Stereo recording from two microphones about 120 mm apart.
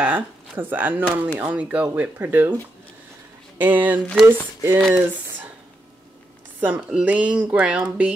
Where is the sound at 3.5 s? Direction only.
15° right (ahead or behind).